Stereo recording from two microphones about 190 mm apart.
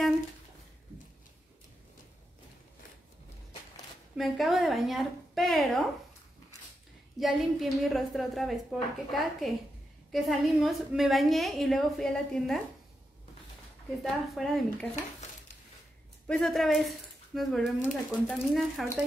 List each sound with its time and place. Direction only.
4.2 s a woman's voice: centre (ahead or behind)
7.2 s a woman's voice: centre (ahead or behind)
14.0 s a woman's voice: centre (ahead or behind)
16.3 s a woman's voice: 5° left (ahead or behind)